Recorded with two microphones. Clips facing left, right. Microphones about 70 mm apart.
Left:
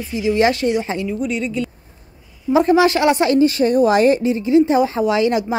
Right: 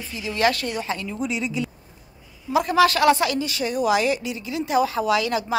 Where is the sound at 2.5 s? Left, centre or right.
Left.